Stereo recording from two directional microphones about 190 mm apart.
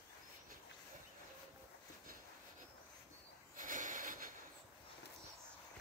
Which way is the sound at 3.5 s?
45° right (ahead or behind).